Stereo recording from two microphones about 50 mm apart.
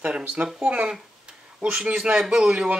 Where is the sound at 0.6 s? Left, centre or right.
Centre.